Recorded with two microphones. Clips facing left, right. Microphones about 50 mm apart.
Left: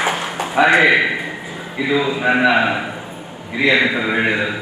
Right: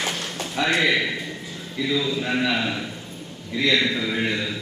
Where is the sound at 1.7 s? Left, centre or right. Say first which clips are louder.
Left 6 dB; left.